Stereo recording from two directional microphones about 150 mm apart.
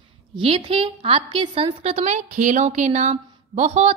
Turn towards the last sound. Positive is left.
turn(degrees=-45)  # may be behind; listen again after turning